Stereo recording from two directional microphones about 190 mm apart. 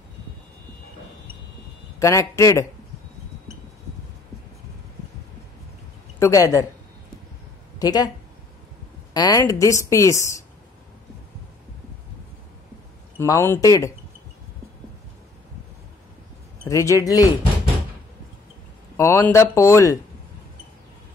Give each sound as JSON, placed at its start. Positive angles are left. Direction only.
{"t": 2.0, "sound": "a woman's voice", "side_deg": 15}
{"t": 6.1, "sound": "a woman's voice", "side_deg": 15}
{"t": 7.8, "sound": "speech", "side_deg": 20}
{"t": 9.1, "sound": "a woman's voice", "side_deg": 20}
{"t": 13.2, "sound": "a woman's voice", "side_deg": 15}
{"t": 16.6, "sound": "a woman's voice", "side_deg": 15}
{"t": 18.9, "sound": "a woman's voice", "side_deg": 15}